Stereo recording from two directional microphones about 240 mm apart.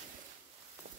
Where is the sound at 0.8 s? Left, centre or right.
Right.